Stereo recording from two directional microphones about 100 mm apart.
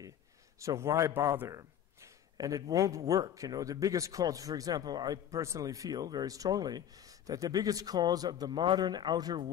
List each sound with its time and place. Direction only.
0.6 s a man's voice: 30° right (ahead or behind); by 9.5 s 45° right (ahead or behind)